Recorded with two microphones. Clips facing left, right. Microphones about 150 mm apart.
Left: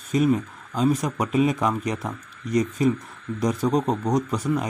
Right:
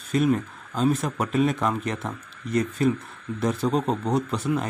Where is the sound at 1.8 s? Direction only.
15° left (ahead or behind).